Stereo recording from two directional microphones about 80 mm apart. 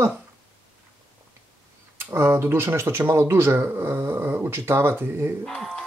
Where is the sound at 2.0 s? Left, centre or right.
Right.